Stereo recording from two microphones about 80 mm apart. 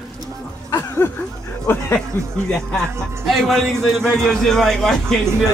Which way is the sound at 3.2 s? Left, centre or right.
Centre.